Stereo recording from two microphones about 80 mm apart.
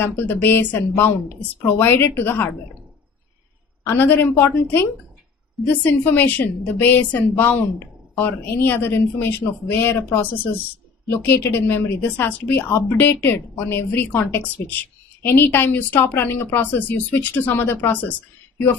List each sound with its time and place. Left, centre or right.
0.0 s a woman's voice: left
3.8 s a woman's voice: left